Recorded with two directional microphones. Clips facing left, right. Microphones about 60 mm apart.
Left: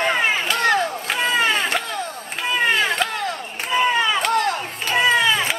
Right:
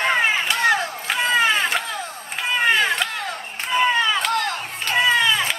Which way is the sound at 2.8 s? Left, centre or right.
Centre.